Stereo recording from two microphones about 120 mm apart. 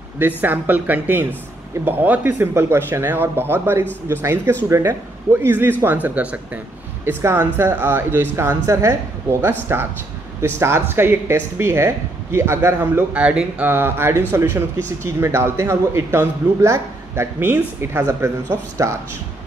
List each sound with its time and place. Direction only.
0.4 s speech: 15° right (ahead or behind)